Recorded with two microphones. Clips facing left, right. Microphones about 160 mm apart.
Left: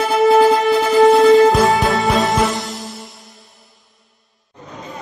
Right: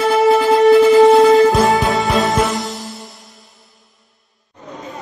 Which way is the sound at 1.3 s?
Centre (ahead or behind).